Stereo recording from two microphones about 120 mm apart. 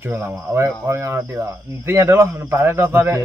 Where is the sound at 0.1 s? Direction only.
25° right (ahead or behind).